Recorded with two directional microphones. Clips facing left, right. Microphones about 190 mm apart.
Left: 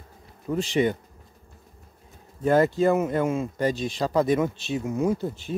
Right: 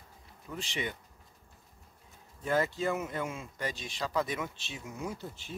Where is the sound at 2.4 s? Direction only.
50° left (ahead or behind).